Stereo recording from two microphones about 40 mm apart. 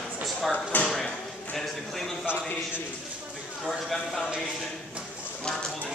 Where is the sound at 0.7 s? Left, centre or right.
Left.